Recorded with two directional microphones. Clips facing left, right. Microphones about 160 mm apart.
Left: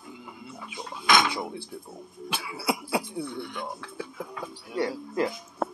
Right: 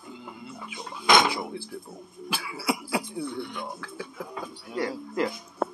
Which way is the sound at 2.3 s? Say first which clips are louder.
Even; 25° left (ahead or behind).